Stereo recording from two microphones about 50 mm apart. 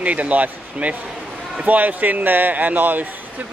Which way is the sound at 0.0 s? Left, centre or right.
Right.